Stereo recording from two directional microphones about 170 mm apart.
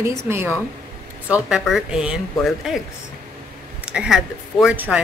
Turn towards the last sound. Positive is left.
turn(degrees=-5)  # may be behind; listen again after turning